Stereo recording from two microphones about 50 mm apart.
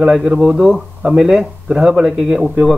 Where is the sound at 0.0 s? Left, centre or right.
Centre.